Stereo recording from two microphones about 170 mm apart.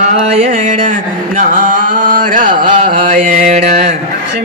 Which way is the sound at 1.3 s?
50° right (ahead or behind).